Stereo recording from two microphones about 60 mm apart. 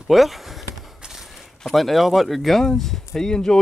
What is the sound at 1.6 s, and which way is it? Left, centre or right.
Speech, centre.